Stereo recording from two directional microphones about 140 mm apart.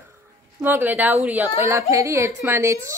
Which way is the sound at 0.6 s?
15° right (ahead or behind).